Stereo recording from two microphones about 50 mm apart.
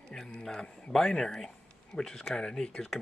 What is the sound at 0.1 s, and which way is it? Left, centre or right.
Speech, centre.